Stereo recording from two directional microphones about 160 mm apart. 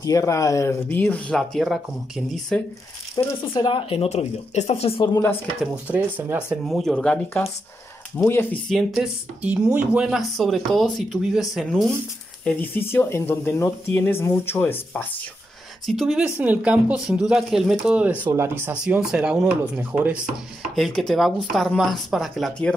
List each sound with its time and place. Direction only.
0.0 s speech: 20° left (ahead or behind); by 2.6 s centre (ahead or behind)
3.2 s speech: 25° left (ahead or behind)
5.9 s speech: 10° right (ahead or behind); by 8.5 s 10° left (ahead or behind)
8.6 s speech: centre (ahead or behind)
12.4 s speech: 10° left (ahead or behind)
15.9 s speech: centre (ahead or behind)
20.7 s speech: centre (ahead or behind)